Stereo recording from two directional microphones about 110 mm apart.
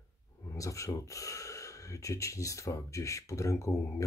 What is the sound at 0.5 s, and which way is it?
Speech, 30° left (ahead or behind).